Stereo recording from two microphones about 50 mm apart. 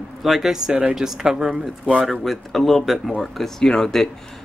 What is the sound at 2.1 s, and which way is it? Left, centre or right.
Speech, centre.